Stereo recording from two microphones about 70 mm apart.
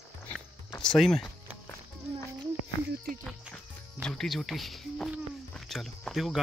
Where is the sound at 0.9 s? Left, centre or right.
Centre.